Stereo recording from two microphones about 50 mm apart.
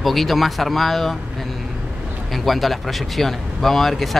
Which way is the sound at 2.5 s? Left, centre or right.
Centre.